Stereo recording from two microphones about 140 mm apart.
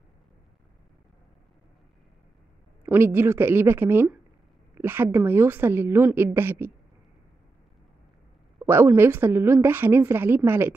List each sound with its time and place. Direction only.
2.8 s a woman's voice: 15° right (ahead or behind)
8.5 s a woman's voice: 15° right (ahead or behind)